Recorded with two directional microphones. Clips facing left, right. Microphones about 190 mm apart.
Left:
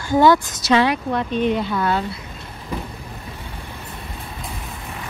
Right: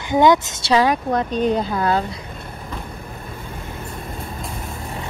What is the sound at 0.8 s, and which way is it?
Speech, 40° right (ahead or behind).